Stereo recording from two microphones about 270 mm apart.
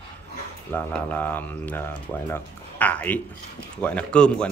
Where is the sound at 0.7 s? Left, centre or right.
Centre.